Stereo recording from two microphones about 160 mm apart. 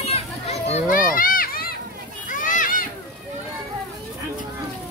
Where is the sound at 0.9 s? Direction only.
60° left (ahead or behind).